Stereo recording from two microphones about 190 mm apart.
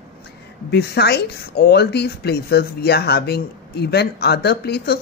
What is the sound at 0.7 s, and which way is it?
Speech, 60° left (ahead or behind).